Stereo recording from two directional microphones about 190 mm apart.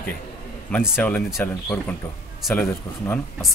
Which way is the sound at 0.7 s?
10° left (ahead or behind).